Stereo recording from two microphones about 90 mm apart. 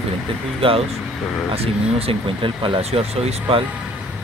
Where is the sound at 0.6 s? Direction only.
90° right.